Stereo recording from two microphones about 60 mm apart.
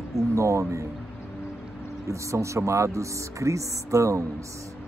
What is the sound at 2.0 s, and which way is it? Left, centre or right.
Speech, right.